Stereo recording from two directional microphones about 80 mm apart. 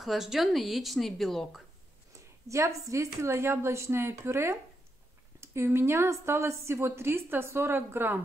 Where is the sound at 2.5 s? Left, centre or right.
Right.